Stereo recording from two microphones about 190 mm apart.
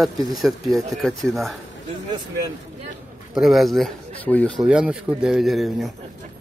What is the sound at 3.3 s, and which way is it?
Speech, centre (ahead or behind).